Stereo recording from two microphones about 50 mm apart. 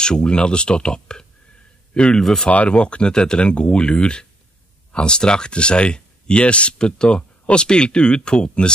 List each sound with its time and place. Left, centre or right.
0.0 s speech: centre